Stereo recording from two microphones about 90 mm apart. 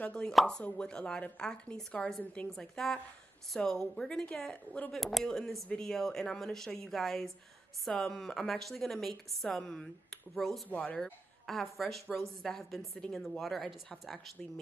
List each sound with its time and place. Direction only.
0.0 s a woman's voice: 10° left (ahead or behind)
4.9 s a woman's voice: centre (ahead or behind)
10.7 s a woman's voice: 15° left (ahead or behind)
11.4 s a woman's voice: centre (ahead or behind)